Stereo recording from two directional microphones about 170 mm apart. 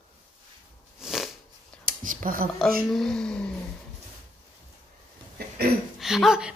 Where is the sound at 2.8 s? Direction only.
Centre (ahead or behind).